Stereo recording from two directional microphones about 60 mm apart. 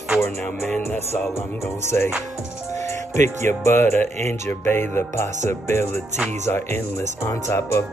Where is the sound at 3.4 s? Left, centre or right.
Left.